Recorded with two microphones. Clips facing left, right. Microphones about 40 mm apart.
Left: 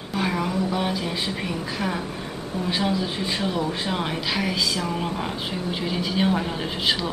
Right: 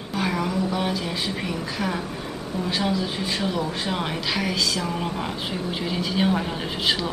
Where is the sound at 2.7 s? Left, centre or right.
Centre.